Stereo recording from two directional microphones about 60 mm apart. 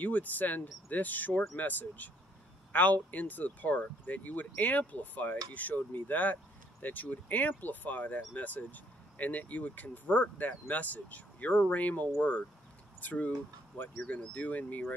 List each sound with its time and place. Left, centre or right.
0.0 s speech: left